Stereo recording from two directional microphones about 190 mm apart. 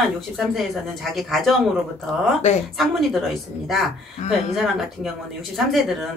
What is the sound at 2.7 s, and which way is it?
A woman's voice, centre (ahead or behind).